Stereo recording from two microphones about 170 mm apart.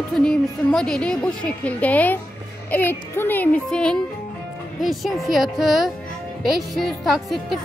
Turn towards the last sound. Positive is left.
turn(degrees=0)  # may be behind; listen again after turning